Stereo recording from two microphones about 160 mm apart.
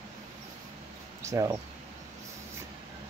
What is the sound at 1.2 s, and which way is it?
Speech, 20° right (ahead or behind).